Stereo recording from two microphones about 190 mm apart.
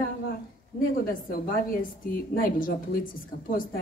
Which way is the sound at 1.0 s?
50° left (ahead or behind).